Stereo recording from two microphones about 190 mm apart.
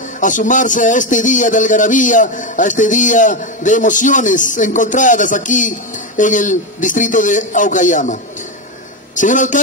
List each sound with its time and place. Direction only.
0.2 s a man's voice: 40° left (ahead or behind)